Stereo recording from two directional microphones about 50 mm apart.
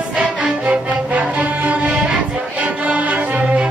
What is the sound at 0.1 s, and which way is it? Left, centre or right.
Music, centre.